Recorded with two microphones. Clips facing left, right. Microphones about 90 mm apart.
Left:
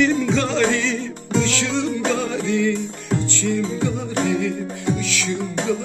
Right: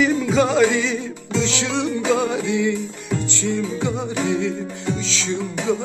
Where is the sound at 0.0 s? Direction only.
10° right (ahead or behind); by 5.4 s 25° right (ahead or behind).